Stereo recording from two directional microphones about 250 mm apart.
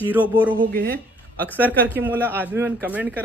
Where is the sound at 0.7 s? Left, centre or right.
Right.